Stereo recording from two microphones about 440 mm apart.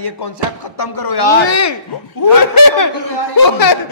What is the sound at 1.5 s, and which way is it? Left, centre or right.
Speech, left.